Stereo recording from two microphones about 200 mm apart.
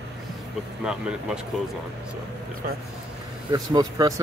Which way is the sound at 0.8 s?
5° right (ahead or behind).